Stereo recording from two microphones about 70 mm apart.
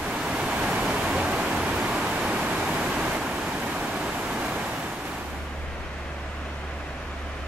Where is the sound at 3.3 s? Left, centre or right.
Centre.